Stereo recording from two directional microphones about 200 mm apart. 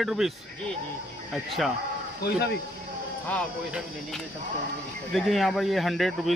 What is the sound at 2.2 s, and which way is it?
Speech, 55° left (ahead or behind).